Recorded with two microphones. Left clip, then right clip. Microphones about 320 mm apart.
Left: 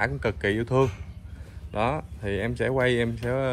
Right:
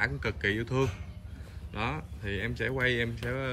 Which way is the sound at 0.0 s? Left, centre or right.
Centre.